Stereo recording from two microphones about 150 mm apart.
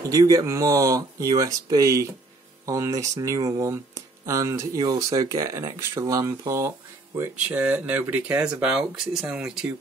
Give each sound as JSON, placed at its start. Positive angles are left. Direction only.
{"t": 0.0, "sound": "speech", "side_deg": -25}